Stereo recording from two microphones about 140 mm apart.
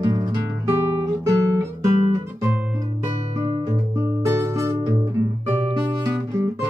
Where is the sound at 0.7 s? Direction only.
20° right (ahead or behind).